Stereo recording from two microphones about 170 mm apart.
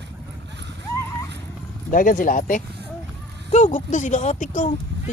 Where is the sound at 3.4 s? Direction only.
40° left (ahead or behind).